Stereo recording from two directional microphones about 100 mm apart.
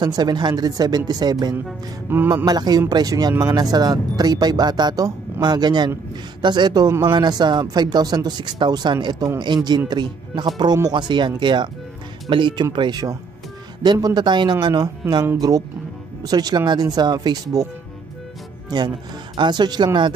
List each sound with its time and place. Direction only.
0.0 s speech: 45° right (ahead or behind)
19.3 s speech: 50° right (ahead or behind)